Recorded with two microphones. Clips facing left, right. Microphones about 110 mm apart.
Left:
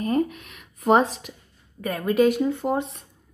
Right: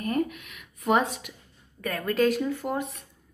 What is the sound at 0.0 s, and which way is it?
Speech, 25° left (ahead or behind).